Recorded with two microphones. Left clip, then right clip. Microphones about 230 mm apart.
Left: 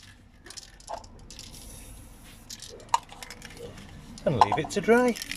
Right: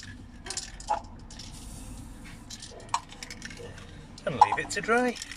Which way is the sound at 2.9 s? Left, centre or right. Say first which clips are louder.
Left 5 dB; left.